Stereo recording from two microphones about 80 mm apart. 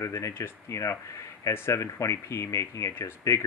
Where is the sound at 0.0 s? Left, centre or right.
Left.